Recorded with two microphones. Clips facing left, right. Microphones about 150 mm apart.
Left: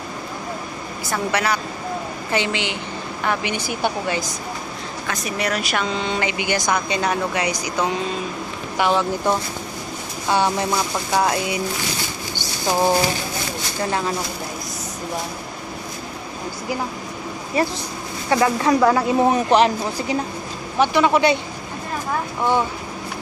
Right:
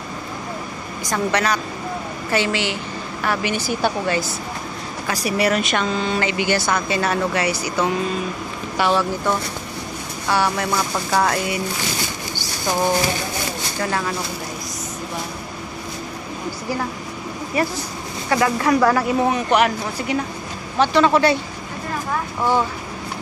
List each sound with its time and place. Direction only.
1.1 s speech: 10° left (ahead or behind)
5.2 s speech: 5° right (ahead or behind)
5.9 s speech: 20° left (ahead or behind)
13.8 s speech: 25° left (ahead or behind)
17.6 s speech: 30° left (ahead or behind)
20.8 s speech: 15° left (ahead or behind)